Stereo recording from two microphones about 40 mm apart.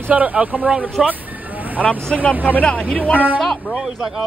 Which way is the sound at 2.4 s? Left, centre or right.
Left.